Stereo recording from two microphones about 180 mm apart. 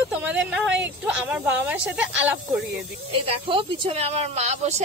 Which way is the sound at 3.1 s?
30° right (ahead or behind).